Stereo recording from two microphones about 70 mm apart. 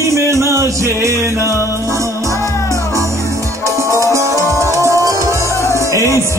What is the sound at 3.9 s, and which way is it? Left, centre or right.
Music, right.